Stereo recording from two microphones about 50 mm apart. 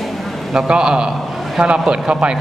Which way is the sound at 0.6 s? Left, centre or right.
Centre.